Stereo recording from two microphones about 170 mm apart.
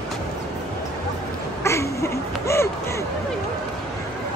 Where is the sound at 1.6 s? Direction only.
15° left (ahead or behind).